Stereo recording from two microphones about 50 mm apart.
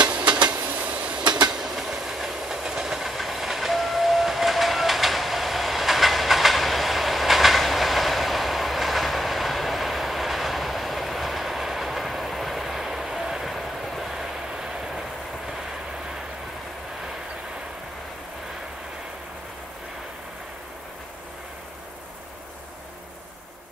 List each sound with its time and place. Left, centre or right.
0.8 s train: right
1.6 s train: centre